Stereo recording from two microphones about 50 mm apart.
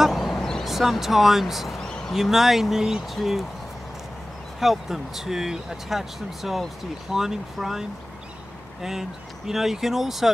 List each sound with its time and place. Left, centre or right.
0.0 s vehicle: centre
0.4 s vehicle: centre
0.7 s speech: centre
1.8 s a sound: centre
2.1 s speech: centre
4.6 s speech: centre
9.5 s speech: centre